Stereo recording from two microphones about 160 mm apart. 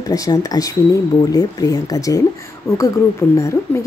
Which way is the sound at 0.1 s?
20° left (ahead or behind).